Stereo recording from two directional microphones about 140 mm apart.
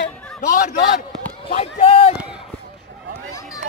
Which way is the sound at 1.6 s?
40° left (ahead or behind).